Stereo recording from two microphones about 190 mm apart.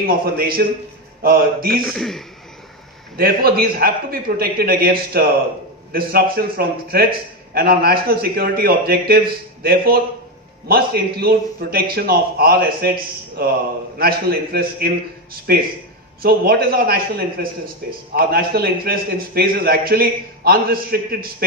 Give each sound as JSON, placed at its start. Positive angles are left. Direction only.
{"t": 0.0, "sound": "a man's voice", "side_deg": -50}
{"t": 1.9, "sound": "a man's voice", "side_deg": 0}
{"t": 3.2, "sound": "a man's voice", "side_deg": -55}